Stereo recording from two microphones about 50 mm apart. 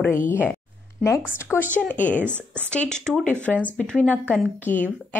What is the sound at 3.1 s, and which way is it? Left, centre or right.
Speech, centre.